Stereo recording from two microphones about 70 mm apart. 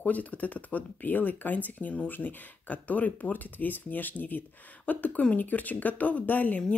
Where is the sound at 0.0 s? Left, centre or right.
Left.